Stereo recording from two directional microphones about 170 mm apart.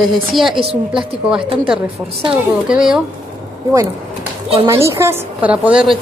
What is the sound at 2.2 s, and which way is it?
Speech, 30° right (ahead or behind).